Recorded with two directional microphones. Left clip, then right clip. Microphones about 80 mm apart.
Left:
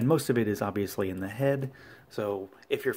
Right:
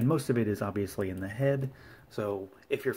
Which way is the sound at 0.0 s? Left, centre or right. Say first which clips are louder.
Left 3 dB; left.